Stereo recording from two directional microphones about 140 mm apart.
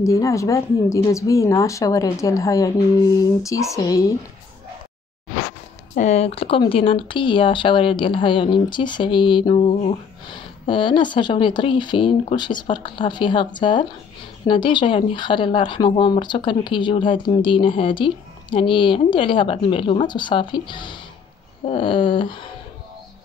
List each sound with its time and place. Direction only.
0.0 s speech: 20° left (ahead or behind)
5.9 s speech: 50° left (ahead or behind)